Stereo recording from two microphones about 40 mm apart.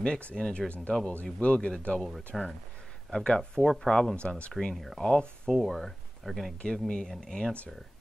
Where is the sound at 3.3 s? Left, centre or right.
Centre.